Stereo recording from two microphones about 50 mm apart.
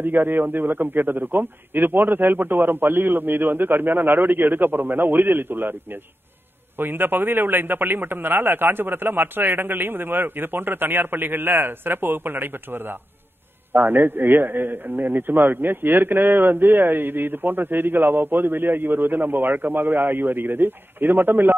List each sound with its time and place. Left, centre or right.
0.0 s a man's voice: right
6.8 s a man's voice: right